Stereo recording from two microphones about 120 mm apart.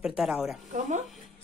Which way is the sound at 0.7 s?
90° right.